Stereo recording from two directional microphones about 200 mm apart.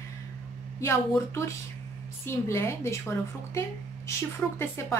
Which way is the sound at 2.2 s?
15° left (ahead or behind).